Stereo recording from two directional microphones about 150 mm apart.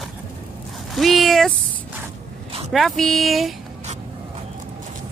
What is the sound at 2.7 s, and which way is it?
Speech, centre (ahead or behind).